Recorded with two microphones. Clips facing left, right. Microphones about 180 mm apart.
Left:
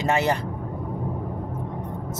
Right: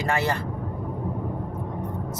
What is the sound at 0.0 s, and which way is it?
Speech, 20° left (ahead or behind).